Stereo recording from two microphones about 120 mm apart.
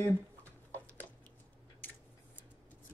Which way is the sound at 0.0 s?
15° left (ahead or behind).